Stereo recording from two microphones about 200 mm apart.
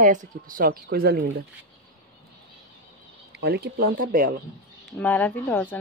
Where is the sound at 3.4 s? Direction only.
50° right (ahead or behind).